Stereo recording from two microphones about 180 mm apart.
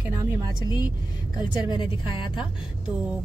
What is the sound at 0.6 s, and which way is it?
A woman's voice, 25° left (ahead or behind).